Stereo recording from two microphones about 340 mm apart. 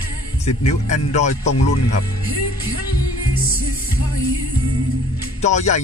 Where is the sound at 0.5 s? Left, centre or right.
Left.